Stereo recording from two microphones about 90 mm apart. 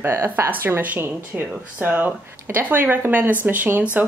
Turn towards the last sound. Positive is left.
turn(degrees=-20)  # may be behind; listen again after turning